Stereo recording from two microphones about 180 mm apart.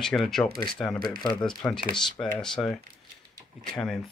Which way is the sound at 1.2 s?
25° left (ahead or behind).